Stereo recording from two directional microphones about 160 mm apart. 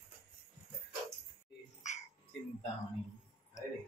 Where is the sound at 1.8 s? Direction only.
50° left (ahead or behind).